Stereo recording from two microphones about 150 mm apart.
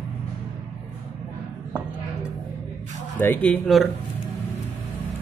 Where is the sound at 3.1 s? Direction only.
10° left (ahead or behind).